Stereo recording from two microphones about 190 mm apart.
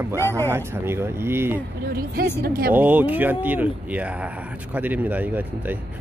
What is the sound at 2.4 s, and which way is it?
Speech, 50° right (ahead or behind).